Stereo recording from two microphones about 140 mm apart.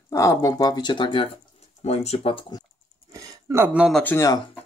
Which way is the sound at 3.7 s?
5° right (ahead or behind).